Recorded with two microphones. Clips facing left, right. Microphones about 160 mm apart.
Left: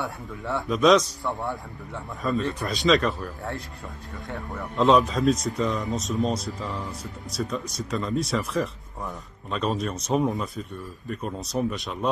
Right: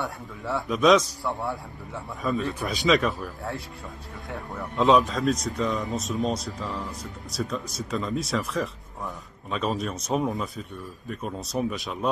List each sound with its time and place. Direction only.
0.0 s speech: centre (ahead or behind)